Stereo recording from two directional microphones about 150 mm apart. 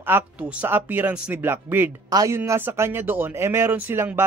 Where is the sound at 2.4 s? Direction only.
15° right (ahead or behind).